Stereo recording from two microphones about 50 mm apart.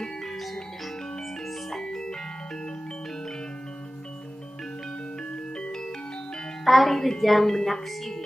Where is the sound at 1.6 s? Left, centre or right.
Centre.